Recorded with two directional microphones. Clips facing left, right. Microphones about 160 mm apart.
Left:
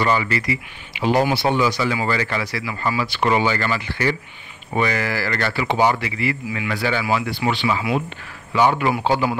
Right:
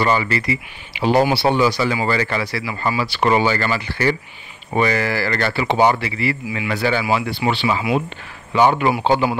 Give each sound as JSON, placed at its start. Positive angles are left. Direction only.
{"t": 0.0, "sound": "speech", "side_deg": -30}